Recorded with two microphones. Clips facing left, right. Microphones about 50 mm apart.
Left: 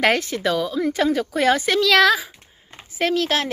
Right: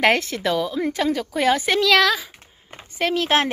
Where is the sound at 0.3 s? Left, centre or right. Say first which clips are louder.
Left 1 dB; centre.